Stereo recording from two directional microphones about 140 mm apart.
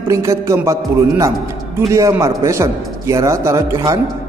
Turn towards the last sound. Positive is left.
turn(degrees=-20)  # may be behind; listen again after turning